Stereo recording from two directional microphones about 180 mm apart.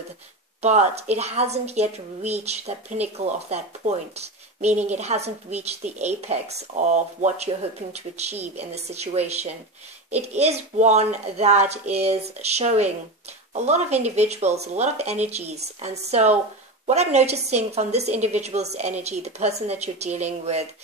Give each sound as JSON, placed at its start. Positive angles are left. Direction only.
{"t": 0.6, "sound": "speech", "side_deg": -40}